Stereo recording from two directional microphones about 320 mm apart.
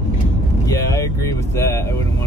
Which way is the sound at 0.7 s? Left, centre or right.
Centre.